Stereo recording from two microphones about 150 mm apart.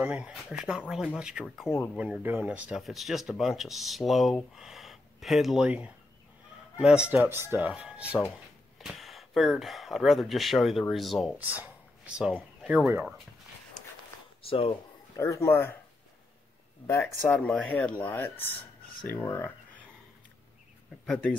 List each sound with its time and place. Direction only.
0.0 s speech: 5° right (ahead or behind)
11.3 s speech: 10° right (ahead or behind)
14.4 s speech: 35° left (ahead or behind)
15.1 s a man's voice: 20° left (ahead or behind)
16.8 s speech: 15° left (ahead or behind)
21.0 s speech: 5° left (ahead or behind)